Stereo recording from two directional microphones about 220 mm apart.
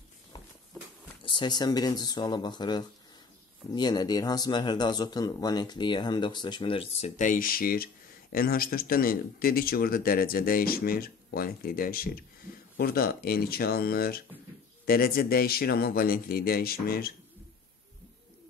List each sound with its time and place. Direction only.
1.2 s speech: 20° left (ahead or behind); by 17.1 s 45° left (ahead or behind)